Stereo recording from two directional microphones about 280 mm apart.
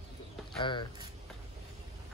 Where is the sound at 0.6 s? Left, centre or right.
Centre.